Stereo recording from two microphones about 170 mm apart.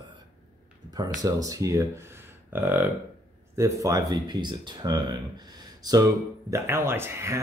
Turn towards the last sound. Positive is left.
turn(degrees=-15)  # may be behind; listen again after turning